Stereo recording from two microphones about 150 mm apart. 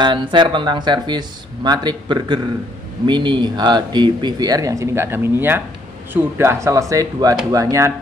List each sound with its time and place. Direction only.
0.0 s speech: 30° right (ahead or behind)